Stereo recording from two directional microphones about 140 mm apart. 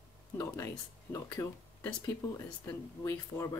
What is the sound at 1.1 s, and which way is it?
Speech, 20° left (ahead or behind).